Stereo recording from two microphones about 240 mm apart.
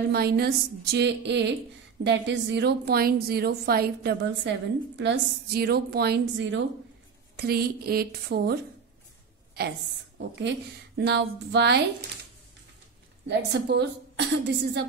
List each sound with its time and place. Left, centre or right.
0.1 s a woman's voice: right
9.6 s a woman's voice: right
13.3 s speech: right